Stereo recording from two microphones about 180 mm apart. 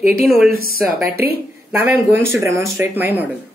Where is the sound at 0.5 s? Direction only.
55° right (ahead or behind).